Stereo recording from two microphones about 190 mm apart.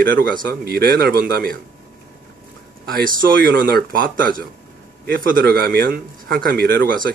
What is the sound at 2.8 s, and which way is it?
Speech, 50° right (ahead or behind).